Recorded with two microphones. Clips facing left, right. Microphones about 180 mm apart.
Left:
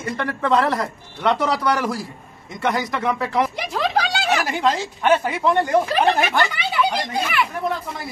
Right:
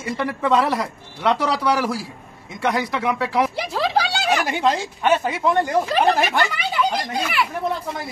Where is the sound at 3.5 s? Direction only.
30° right (ahead or behind).